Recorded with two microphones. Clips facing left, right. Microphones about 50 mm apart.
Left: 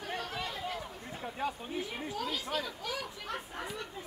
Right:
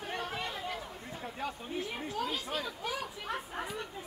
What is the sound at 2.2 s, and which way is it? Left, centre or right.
Speech, centre.